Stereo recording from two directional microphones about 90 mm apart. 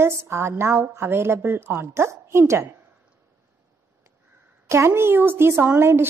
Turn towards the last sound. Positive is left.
turn(degrees=-25)  # may be behind; listen again after turning